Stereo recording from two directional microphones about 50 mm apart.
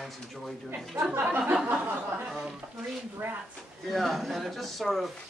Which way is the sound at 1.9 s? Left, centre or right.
Right.